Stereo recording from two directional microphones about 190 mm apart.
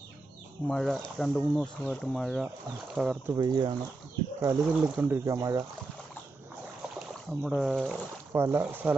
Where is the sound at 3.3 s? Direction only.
20° right (ahead or behind).